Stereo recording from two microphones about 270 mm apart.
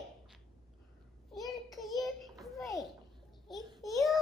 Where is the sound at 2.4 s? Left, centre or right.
Centre.